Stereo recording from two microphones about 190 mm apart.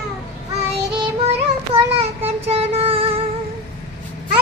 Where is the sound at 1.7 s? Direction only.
30° right (ahead or behind).